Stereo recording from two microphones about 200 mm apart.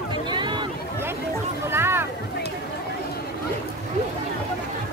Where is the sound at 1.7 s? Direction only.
10° right (ahead or behind).